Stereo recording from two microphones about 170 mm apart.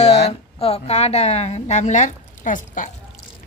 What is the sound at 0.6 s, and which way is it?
A woman's voice, 35° left (ahead or behind).